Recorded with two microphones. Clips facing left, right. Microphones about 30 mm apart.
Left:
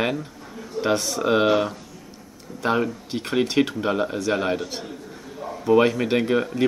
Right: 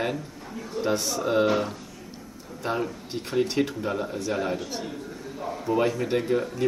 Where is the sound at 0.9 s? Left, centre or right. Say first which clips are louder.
Left 3 dB; left.